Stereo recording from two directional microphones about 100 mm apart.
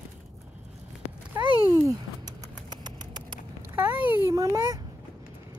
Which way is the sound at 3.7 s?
15° right (ahead or behind).